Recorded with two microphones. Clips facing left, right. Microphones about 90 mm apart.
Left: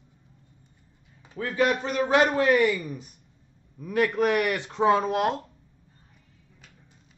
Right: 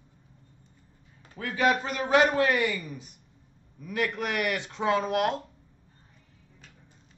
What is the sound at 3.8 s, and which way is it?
Speech, 35° left (ahead or behind).